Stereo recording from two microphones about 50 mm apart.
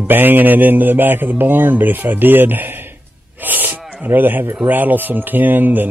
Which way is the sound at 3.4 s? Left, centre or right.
Right.